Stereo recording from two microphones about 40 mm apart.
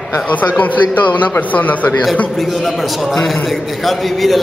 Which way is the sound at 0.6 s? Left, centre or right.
Left.